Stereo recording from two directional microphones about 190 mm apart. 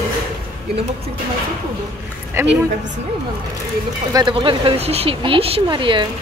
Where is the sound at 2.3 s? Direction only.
10° right (ahead or behind).